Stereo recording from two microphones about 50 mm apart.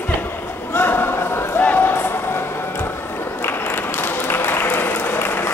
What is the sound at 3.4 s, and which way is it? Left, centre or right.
Applause, left.